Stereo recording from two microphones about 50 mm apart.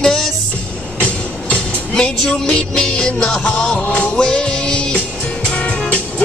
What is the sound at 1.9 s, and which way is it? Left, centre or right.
Music, centre.